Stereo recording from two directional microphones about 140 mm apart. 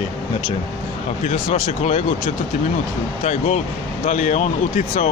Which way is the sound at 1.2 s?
60° left (ahead or behind).